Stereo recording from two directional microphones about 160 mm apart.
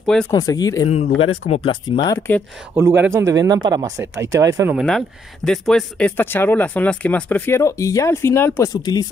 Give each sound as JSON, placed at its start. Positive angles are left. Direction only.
{"t": 0.0, "sound": "speech", "side_deg": 5}
{"t": 0.3, "sound": "speech", "side_deg": 25}
{"t": 1.1, "sound": "speech", "side_deg": 35}
{"t": 2.0, "sound": "speech", "side_deg": 20}
{"t": 2.7, "sound": "speech", "side_deg": -15}
{"t": 4.7, "sound": "speech", "side_deg": 5}